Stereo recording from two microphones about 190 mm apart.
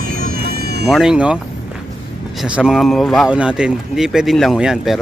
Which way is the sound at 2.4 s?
5° right (ahead or behind).